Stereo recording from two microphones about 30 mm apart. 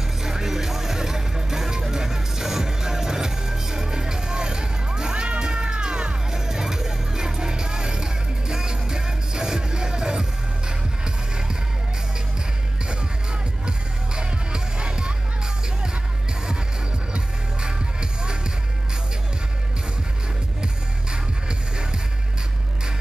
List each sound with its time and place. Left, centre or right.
0.2 s music: centre; by 6.1 s right
6.3 s music: centre
13.7 s music: right
17.1 s music: right